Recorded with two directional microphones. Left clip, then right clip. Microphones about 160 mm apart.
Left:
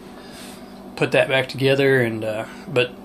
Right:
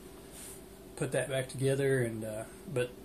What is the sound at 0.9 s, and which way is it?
Speech, 45° left (ahead or behind).